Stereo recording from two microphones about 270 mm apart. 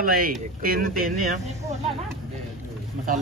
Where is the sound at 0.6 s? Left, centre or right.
Right.